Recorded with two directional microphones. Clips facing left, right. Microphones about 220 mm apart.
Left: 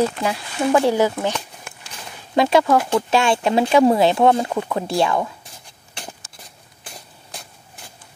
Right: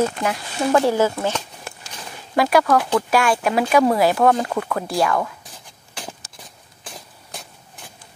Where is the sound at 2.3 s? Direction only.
25° left (ahead or behind).